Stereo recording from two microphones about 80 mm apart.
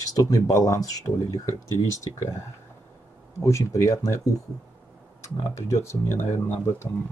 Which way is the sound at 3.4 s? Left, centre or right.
Left.